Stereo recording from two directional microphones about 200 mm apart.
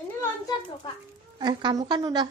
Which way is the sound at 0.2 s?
20° left (ahead or behind).